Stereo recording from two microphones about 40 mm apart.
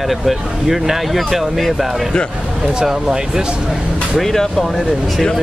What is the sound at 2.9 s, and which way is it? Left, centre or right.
Speech, centre.